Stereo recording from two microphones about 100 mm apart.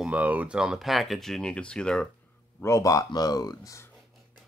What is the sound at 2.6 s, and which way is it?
Speech, 30° left (ahead or behind).